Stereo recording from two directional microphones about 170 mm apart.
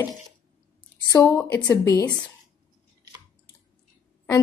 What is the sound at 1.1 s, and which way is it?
Speech, 15° left (ahead or behind).